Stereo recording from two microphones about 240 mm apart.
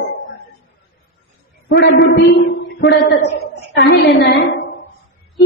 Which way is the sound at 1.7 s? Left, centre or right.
Left.